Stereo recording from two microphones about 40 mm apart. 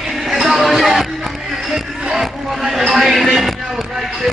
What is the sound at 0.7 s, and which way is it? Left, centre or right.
Music, centre.